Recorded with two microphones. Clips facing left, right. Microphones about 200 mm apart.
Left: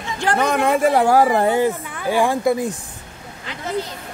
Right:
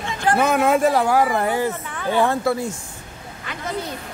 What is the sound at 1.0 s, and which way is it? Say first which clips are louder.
Speech: left 4 dB; 40° left (ahead or behind).